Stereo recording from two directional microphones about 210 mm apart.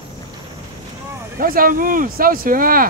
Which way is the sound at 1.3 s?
45° right (ahead or behind).